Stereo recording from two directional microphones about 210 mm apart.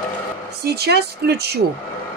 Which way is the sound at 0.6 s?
50° right (ahead or behind).